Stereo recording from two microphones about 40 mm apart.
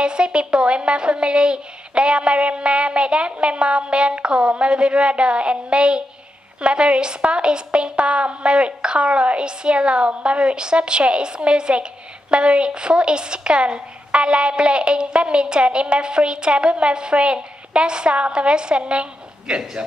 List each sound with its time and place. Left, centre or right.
0.0 s a woman's voice: right